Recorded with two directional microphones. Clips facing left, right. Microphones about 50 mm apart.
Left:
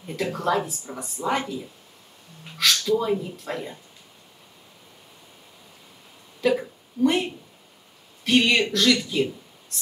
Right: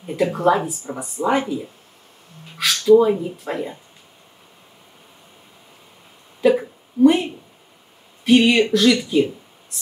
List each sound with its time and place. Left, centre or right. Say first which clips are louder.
0.0 s speech: right 8 dB; centre
6.4 s speech: right 6 dB; centre